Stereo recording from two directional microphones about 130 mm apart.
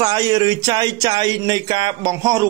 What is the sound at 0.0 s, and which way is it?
Speech, 30° right (ahead or behind).